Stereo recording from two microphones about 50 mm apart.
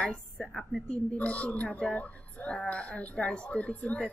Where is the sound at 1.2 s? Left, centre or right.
Left.